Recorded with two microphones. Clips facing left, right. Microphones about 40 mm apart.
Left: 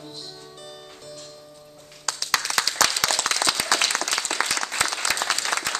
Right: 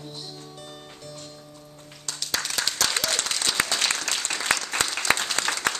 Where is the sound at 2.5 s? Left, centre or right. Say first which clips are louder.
Left 4 dB; left.